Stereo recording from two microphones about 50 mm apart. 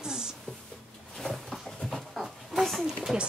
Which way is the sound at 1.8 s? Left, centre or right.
Centre.